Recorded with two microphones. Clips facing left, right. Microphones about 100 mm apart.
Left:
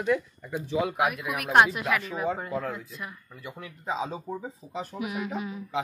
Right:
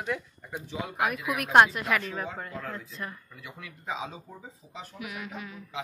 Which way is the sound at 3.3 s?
35° left (ahead or behind).